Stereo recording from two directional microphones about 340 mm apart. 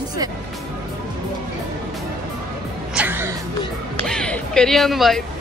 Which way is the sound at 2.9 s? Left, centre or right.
Centre.